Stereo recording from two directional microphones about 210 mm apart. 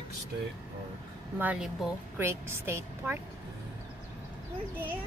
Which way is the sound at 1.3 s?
5° right (ahead or behind).